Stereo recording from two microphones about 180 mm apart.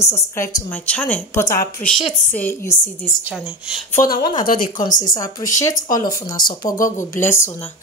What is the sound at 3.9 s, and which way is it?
Speech, 50° left (ahead or behind).